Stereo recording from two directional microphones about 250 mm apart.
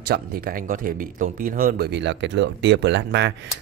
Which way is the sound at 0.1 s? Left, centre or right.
Right.